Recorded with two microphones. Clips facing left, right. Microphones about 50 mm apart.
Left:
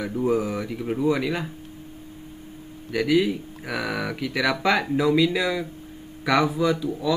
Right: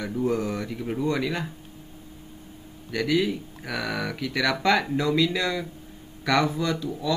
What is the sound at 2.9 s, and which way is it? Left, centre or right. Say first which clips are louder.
Speech: left 3 dB; centre.